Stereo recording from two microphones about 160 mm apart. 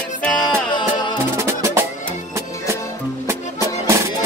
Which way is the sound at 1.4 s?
15° right (ahead or behind).